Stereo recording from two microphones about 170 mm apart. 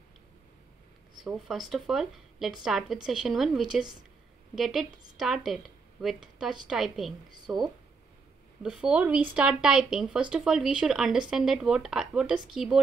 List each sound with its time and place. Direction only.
1.2 s speech: centre (ahead or behind)
7.2 s a woman's voice: 25° right (ahead or behind)
8.6 s speech: 5° right (ahead or behind)